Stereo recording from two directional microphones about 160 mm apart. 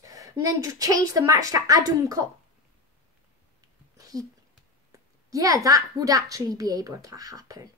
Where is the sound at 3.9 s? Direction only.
20° right (ahead or behind).